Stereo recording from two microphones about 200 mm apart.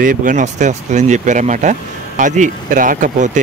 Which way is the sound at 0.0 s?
40° right (ahead or behind).